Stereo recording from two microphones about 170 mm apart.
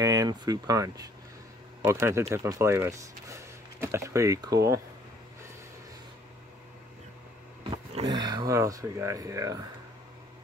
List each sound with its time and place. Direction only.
0.0 s speech: 20° right (ahead or behind)
7.7 s speech: 30° right (ahead or behind)